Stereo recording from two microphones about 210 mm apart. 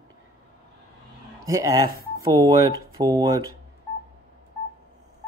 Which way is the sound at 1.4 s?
15° right (ahead or behind).